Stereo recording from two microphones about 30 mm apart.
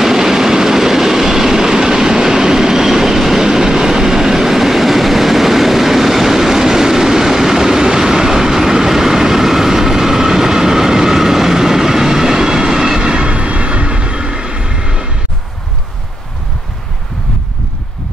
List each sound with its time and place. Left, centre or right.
0.0 s train: centre